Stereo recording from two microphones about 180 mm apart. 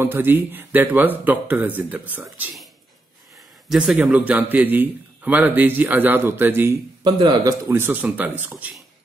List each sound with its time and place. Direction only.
0.0 s a man's voice: 10° right (ahead or behind)
3.7 s a man's voice: 5° right (ahead or behind)
7.0 s speech: 25° right (ahead or behind)
7.6 s a man's voice: 10° right (ahead or behind)